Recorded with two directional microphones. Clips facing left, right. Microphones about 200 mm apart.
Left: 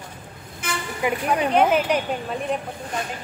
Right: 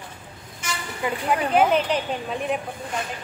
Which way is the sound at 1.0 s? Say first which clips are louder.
Left 2 dB; 15° left (ahead or behind).